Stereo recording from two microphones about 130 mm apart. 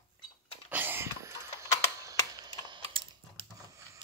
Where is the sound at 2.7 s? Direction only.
40° right (ahead or behind).